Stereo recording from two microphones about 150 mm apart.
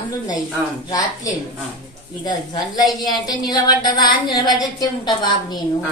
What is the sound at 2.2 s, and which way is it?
A woman's voice, 30° left (ahead or behind).